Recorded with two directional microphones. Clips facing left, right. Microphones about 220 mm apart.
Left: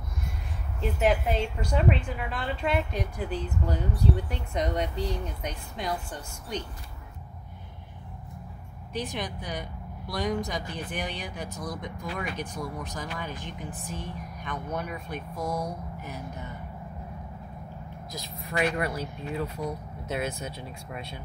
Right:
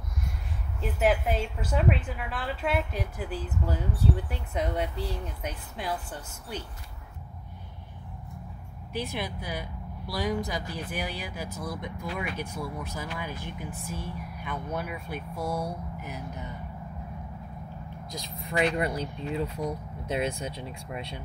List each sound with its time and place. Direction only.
0.7 s a woman's voice: 5° right (ahead or behind)
9.2 s a woman's voice: 5° right (ahead or behind)
18.2 s speech: 25° right (ahead or behind)